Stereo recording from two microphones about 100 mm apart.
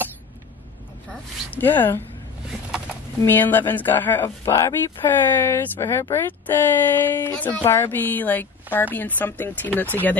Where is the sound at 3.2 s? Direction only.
20° left (ahead or behind).